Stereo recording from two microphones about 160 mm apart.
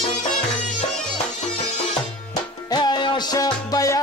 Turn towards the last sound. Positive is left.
turn(degrees=20)  # may be behind; listen again after turning